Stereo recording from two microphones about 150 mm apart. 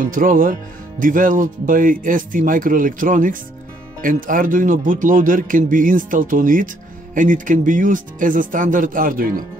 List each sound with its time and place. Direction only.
0.0 s speech: 65° right (ahead or behind)